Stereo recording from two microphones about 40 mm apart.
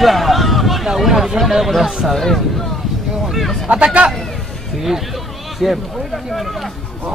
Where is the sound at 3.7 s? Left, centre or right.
Right.